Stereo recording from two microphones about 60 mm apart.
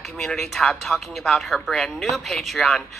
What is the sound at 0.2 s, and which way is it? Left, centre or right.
Speech, centre.